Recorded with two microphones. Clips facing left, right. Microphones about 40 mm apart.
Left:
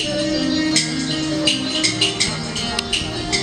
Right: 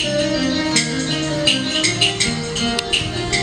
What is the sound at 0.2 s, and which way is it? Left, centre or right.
Music, right.